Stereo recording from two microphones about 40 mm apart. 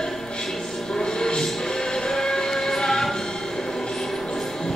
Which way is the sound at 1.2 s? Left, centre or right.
Centre.